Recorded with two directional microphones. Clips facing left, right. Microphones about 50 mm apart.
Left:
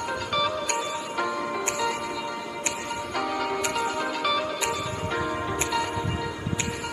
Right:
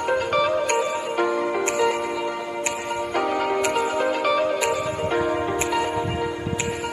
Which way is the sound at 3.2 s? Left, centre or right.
Right.